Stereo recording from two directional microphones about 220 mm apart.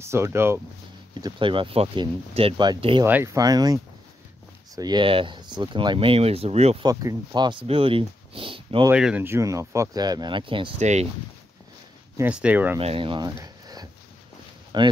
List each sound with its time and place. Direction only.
0.0 s speech: 10° right (ahead or behind)
1.2 s speech: 20° right (ahead or behind)
6.9 s speech: 15° right (ahead or behind)
8.9 s speech: 5° right (ahead or behind); by 11.1 s 30° right (ahead or behind)
12.2 s speech: 5° right (ahead or behind)
12.7 s speech: 25° right (ahead or behind)